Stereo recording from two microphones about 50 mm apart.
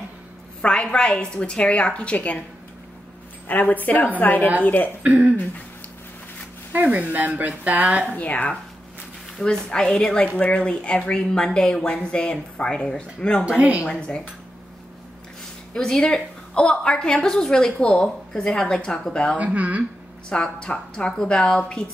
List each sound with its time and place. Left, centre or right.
0.6 s a woman's voice: centre
3.4 s speech: left
5.0 s speech: right
6.7 s speech: right
8.2 s a woman's voice: left
9.4 s a woman's voice: centre
13.6 s speech: right
13.8 s a woman's voice: left
15.7 s a woman's voice: centre
17.6 s a woman's voice: left
19.3 s speech: right
20.2 s a woman's voice: centre